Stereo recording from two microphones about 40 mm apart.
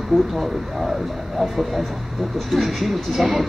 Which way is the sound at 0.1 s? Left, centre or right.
Centre.